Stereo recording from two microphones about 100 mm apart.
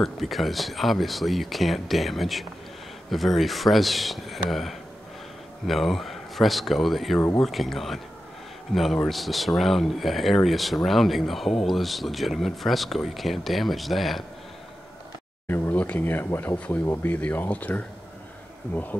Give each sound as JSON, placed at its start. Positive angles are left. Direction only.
{"t": 0.0, "sound": "speech", "side_deg": 0}
{"t": 15.4, "sound": "speech", "side_deg": 20}
{"t": 16.5, "sound": "speech", "side_deg": 10}